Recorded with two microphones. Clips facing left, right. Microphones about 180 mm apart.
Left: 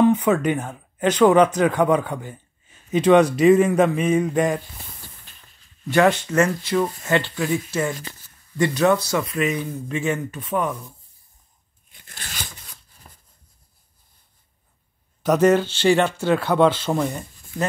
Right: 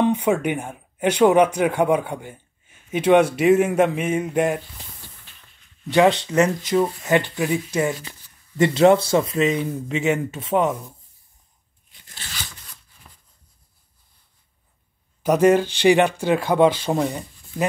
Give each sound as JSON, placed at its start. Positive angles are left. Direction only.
{"t": 0.1, "sound": "speech", "side_deg": -10}
{"t": 6.2, "sound": "speech", "side_deg": -20}
{"t": 11.9, "sound": "tearing", "side_deg": 50}
{"t": 12.9, "sound": "a sound", "side_deg": 45}
{"t": 15.2, "sound": "speech", "side_deg": -10}